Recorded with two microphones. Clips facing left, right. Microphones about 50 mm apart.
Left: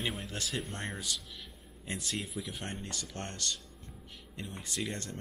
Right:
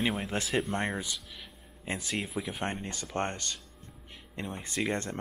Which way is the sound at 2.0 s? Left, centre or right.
Centre.